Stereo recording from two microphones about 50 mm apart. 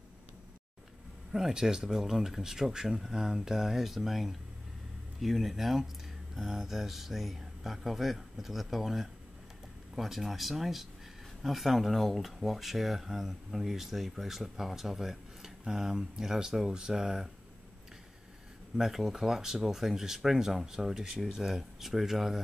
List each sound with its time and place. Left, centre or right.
1.3 s speech: centre
18.8 s speech: centre